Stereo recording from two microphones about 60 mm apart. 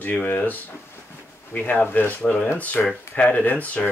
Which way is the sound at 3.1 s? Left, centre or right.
Left.